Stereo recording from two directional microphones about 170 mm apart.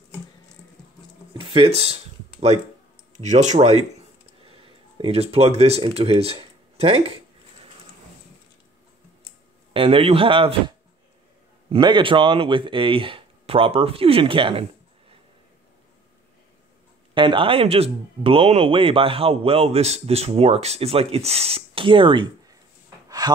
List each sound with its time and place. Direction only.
1.4 s a sound: 30° right (ahead or behind)
3.2 s speech: 45° right (ahead or behind)
9.8 s speech: 30° right (ahead or behind)
11.7 s speech: 30° right (ahead or behind)
17.1 s speech: 30° right (ahead or behind)
23.0 s a sound: 25° right (ahead or behind)